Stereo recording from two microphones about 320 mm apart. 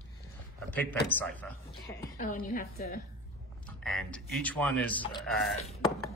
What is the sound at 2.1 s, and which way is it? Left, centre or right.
Speech, left.